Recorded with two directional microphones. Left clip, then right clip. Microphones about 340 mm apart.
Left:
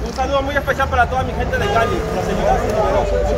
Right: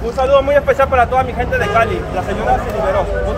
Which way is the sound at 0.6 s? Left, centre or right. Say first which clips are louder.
Right 4 dB; centre.